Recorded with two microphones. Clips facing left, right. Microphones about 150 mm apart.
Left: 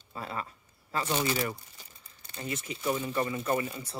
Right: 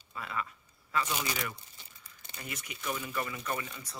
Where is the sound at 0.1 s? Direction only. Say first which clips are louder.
Left 1 dB; 35° left (ahead or behind).